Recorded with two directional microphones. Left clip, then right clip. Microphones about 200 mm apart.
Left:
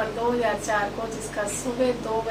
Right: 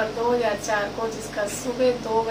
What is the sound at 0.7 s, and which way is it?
Speech, 5° right (ahead or behind).